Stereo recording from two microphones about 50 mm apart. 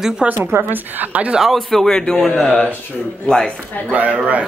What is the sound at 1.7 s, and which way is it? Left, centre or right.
Speech, centre.